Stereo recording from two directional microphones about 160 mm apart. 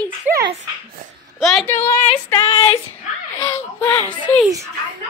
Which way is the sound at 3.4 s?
15° left (ahead or behind).